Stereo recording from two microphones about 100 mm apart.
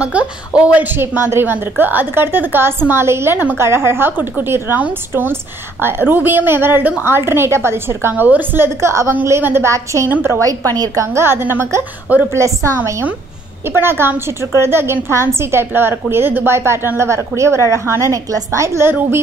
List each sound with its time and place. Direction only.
0.0 s a woman's voice: 10° right (ahead or behind); by 12.7 s 30° right (ahead or behind)
12.7 s a woman's voice: 20° right (ahead or behind)